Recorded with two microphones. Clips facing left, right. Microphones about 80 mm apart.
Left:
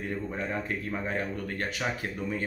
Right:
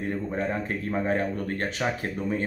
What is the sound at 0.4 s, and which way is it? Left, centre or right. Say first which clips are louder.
Speech: right 4 dB; right.